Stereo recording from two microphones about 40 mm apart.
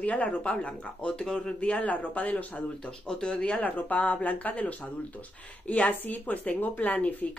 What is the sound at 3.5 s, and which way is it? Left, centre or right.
Speech, left.